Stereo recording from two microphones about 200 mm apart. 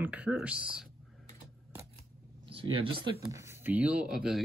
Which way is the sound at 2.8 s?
25° right (ahead or behind).